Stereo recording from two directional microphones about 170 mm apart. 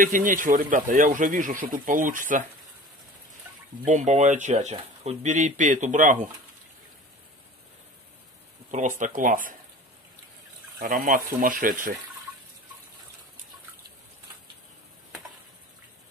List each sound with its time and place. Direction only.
0.0 s speech: 50° right (ahead or behind)
3.8 s speech: 45° right (ahead or behind)
8.7 s speech: 45° right (ahead or behind)
10.8 s speech: 55° right (ahead or behind)